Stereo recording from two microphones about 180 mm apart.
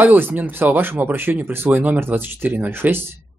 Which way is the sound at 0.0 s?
10° right (ahead or behind).